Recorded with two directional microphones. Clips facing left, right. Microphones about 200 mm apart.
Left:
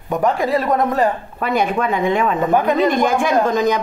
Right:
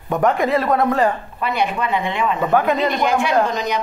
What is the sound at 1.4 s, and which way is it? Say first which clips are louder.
A woman's voice: left 3 dB; 45° left (ahead or behind).